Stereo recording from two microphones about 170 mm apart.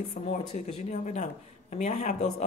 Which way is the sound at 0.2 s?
50° left (ahead or behind).